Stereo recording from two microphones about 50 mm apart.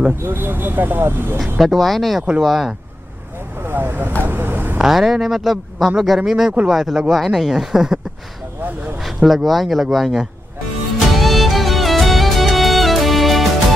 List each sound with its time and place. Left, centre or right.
0.2 s speech: right
1.4 s speech: centre
3.6 s vehicle: right
4.8 s speech: centre
9.0 s speech: centre
11.1 s music: centre